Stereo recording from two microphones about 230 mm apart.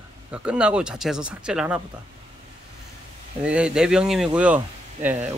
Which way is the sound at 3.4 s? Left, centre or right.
Centre.